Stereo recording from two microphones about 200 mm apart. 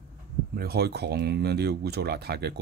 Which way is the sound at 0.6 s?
50° right (ahead or behind).